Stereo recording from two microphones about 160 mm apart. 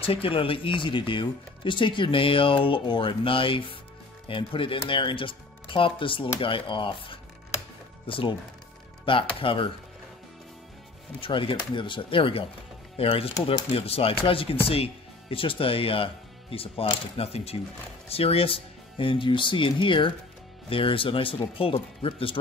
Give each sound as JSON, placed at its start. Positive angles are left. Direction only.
{"t": 0.0, "sound": "speech", "side_deg": 35}
{"t": 11.1, "sound": "speech", "side_deg": 35}